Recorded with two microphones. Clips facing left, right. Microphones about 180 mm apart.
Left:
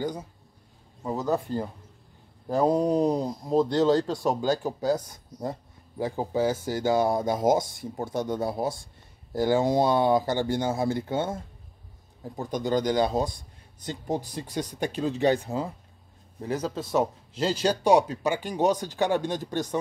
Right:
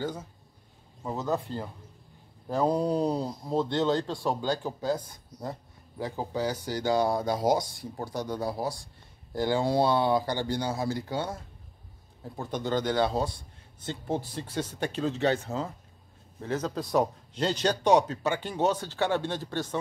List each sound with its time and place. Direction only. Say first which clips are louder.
0.0 s speech: left 3 dB; 15° left (ahead or behind)
6.5 s speech: left 4 dB; 45° left (ahead or behind)
6.8 s speech: left 2 dB; 20° left (ahead or behind)
12.4 s speech: left 3 dB; 15° left (ahead or behind)